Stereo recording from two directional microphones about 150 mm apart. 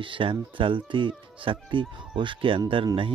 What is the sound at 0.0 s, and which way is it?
Speech, 35° right (ahead or behind).